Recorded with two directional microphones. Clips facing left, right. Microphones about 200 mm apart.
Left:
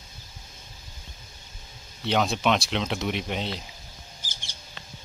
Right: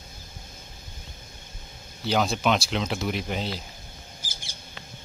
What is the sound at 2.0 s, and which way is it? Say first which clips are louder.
Speech: even; centre (ahead or behind).